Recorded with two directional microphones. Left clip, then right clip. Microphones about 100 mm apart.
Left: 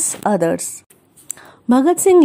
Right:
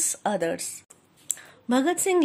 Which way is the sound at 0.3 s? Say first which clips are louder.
Left 10 dB; 55° left (ahead or behind).